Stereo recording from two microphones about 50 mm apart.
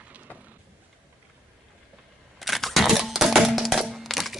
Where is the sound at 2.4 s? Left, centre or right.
Centre.